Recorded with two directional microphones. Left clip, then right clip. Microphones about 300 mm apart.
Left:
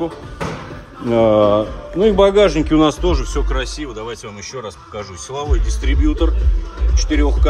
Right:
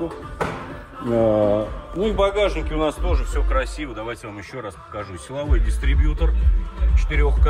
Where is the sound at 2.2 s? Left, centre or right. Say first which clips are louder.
Left 7 dB; left.